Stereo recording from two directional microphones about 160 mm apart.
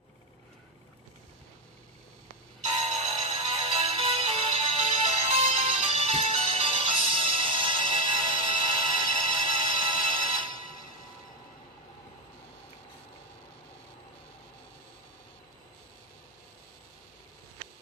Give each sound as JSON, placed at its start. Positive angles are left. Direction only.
{"t": 2.6, "sound": "music", "side_deg": -40}